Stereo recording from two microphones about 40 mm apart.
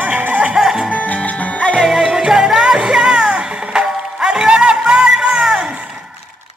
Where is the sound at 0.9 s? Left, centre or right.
Left.